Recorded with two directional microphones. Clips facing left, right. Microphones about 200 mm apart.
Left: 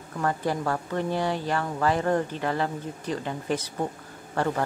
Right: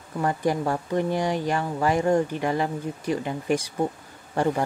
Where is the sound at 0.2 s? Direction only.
15° right (ahead or behind).